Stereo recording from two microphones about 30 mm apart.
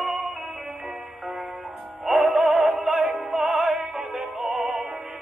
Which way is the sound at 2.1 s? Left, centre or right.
Right.